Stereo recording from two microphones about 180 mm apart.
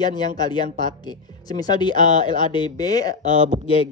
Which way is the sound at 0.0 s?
25° left (ahead or behind).